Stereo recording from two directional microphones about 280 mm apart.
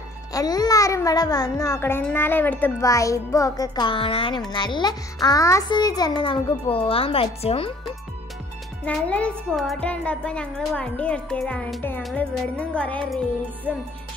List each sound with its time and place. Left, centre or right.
0.3 s a child's voice: centre
8.8 s a child's voice: centre